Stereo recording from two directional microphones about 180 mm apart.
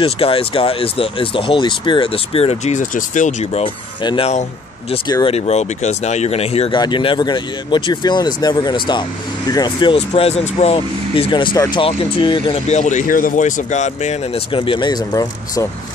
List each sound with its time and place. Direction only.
0.0 s speech: 30° left (ahead or behind)